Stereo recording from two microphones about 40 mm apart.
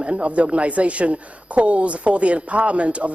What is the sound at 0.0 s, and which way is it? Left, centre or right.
A woman's voice, right.